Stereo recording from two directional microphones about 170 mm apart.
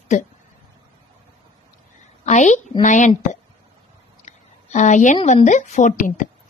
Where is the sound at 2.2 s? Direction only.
45° left (ahead or behind).